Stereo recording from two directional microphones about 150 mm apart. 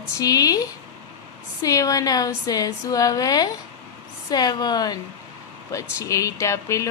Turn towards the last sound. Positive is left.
turn(degrees=20)  # may be behind; listen again after turning